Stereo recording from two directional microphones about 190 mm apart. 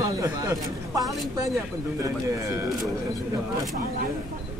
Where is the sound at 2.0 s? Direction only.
15° right (ahead or behind).